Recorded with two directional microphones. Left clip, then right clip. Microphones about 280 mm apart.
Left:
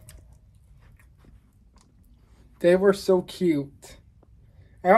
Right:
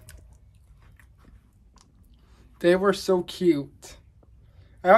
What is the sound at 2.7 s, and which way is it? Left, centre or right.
Speech, centre.